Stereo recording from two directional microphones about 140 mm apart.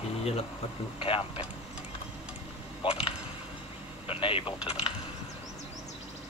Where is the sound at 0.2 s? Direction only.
45° left (ahead or behind).